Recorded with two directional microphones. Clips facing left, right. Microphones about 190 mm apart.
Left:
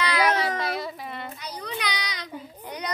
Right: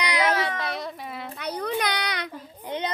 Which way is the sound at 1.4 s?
55° right (ahead or behind).